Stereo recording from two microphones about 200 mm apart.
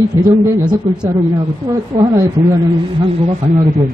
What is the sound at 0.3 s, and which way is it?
A man's voice, 15° right (ahead or behind).